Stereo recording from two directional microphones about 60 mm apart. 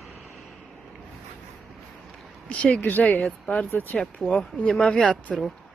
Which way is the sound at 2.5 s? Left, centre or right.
Centre.